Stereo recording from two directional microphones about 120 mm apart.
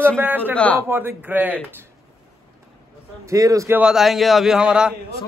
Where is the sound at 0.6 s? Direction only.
10° left (ahead or behind).